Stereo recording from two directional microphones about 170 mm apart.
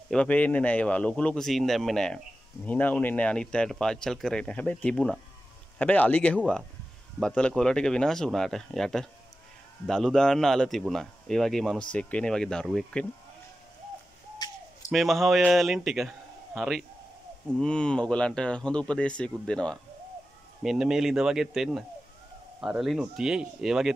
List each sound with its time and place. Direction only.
0.1 s speech: 10° left (ahead or behind)
14.4 s a sound: 25° left (ahead or behind)
14.9 s a man's voice: centre (ahead or behind)